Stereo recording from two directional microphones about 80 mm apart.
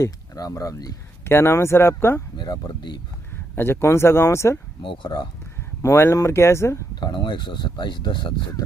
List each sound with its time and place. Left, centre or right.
0.0 s speech: left
1.2 s speech: left
2.3 s speech: left
3.5 s speech: left
4.8 s speech: left
5.8 s speech: left
7.0 s speech: left